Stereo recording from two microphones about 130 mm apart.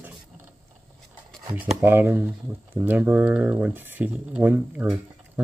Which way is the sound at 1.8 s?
15° right (ahead or behind).